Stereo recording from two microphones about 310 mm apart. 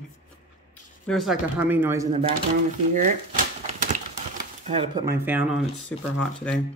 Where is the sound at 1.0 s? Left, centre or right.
Centre.